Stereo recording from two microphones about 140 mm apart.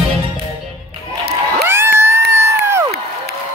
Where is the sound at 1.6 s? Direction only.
20° right (ahead or behind).